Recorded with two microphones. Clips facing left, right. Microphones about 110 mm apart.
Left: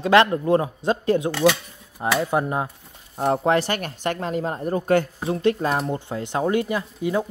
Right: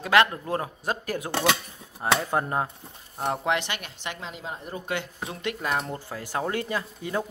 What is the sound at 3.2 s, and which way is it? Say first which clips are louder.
Speech: left 7 dB; 35° left (ahead or behind).